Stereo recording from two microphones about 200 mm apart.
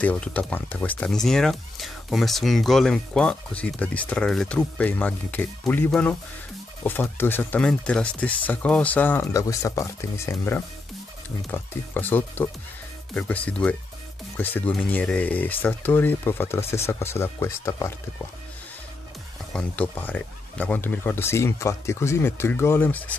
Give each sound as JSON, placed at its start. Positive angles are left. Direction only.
{"t": 0.0, "sound": "speech", "side_deg": 5}
{"t": 19.5, "sound": "speech", "side_deg": 5}